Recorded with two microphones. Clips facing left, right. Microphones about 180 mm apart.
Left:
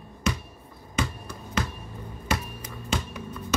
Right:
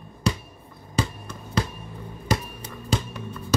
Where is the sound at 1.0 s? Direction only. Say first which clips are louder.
Right 3 dB; 35° right (ahead or behind).